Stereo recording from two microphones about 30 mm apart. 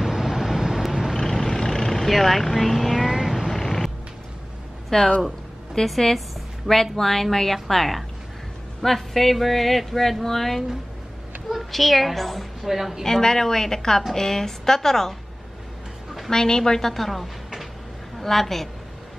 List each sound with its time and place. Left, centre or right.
0.0 s vehicle: centre
1.1 s vehicle: centre
1.9 s a woman's voice: centre
3.2 s vehicle: centre
3.5 s a sound: centre
4.9 s a woman's voice: centre
12.6 s a woman's voice: centre
13.0 s a woman's voice: centre
16.3 s a woman's voice: left
16.9 s a woman's voice: centre